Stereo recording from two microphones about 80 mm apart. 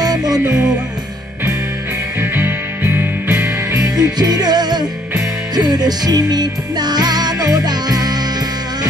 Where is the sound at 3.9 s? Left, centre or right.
Right.